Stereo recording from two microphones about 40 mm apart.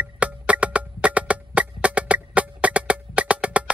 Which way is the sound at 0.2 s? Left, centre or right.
Right.